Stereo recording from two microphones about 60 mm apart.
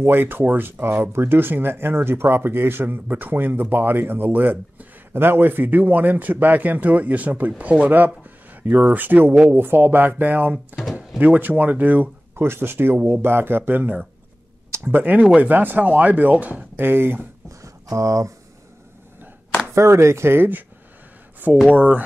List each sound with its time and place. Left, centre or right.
0.0 s speech: right
17.5 s a sound: right
19.7 s speech: right